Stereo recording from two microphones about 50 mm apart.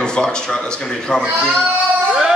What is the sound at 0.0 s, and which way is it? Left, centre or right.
Speech, centre.